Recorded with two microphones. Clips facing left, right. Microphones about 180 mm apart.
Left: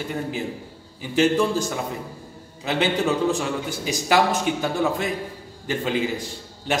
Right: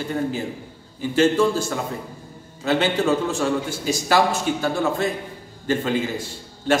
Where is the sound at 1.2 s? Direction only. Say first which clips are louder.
Right 1 dB; 15° left (ahead or behind).